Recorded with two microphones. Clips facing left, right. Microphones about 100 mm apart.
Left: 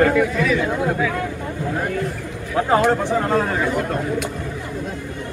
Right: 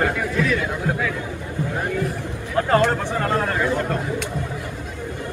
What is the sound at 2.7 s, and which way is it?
A man's voice, 15° left (ahead or behind).